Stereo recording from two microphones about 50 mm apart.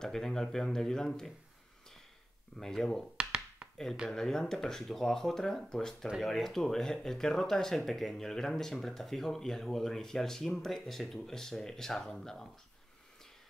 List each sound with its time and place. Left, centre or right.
0.0 s speech: centre
2.6 s speech: centre
3.2 s a sound: centre
4.1 s speech: centre